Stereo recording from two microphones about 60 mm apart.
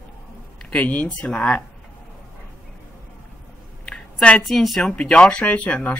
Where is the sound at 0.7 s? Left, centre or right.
Left.